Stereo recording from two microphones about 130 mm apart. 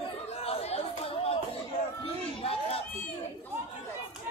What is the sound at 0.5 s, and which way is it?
Chatter, 50° left (ahead or behind).